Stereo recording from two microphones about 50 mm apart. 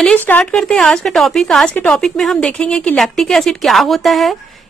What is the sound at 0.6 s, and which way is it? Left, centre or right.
A woman's voice, centre.